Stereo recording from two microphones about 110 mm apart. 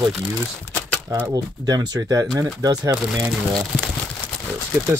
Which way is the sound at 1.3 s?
35° right (ahead or behind).